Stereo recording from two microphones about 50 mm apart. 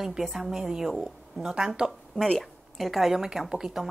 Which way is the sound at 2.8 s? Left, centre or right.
Centre.